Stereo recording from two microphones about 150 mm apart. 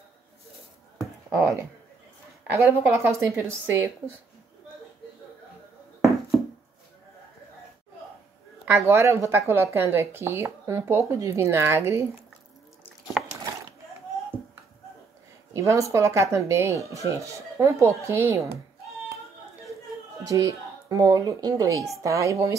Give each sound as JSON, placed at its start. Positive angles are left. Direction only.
{"t": 0.9, "sound": "a sound", "side_deg": -20}
{"t": 2.5, "sound": "speech", "side_deg": -15}
{"t": 8.7, "sound": "speech", "side_deg": -20}
{"t": 15.5, "sound": "speech", "side_deg": -20}
{"t": 20.2, "sound": "speech", "side_deg": -20}